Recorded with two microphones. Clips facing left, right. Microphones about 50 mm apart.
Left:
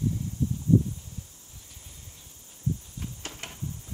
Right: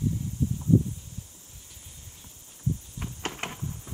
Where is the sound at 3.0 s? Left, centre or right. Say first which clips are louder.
Right 5 dB; right.